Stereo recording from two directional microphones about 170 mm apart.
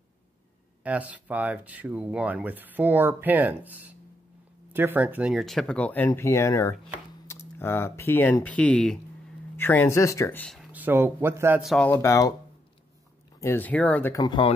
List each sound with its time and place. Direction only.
0.8 s speech: 10° right (ahead or behind); by 10.4 s 15° left (ahead or behind)
10.4 s a sound: centre (ahead or behind)
10.7 s speech: 10° right (ahead or behind)
11.6 s speech: centre (ahead or behind)
11.9 s speech: 15° left (ahead or behind)
13.4 s speech: 10° left (ahead or behind)
14.1 s speech: 25° left (ahead or behind)